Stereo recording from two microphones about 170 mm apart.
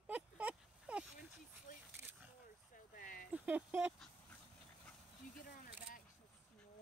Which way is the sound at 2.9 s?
55° left (ahead or behind).